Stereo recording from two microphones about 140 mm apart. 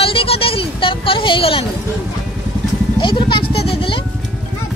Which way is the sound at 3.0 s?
35° left (ahead or behind).